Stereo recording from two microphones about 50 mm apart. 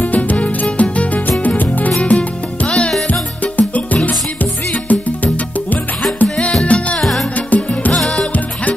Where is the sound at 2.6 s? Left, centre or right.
Left.